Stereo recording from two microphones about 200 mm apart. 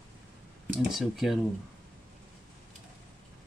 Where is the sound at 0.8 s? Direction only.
Centre (ahead or behind).